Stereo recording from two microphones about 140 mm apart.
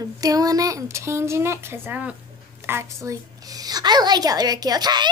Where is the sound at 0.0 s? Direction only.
25° right (ahead or behind).